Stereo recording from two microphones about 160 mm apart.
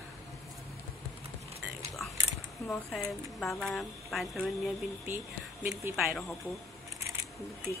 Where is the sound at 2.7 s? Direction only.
Centre (ahead or behind).